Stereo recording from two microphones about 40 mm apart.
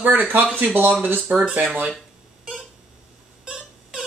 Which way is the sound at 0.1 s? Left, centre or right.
Right.